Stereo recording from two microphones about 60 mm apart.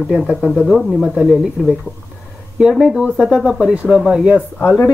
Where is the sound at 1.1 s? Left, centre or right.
Centre.